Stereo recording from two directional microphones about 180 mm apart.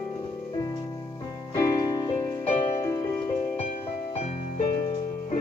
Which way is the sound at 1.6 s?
20° left (ahead or behind).